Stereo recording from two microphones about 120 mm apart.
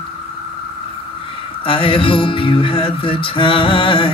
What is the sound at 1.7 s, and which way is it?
Music, 45° left (ahead or behind).